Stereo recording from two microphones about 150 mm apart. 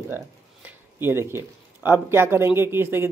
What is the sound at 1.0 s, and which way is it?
A man's voice, 15° right (ahead or behind).